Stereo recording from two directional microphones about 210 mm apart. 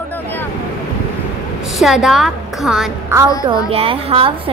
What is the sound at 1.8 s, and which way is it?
A woman's voice, centre (ahead or behind).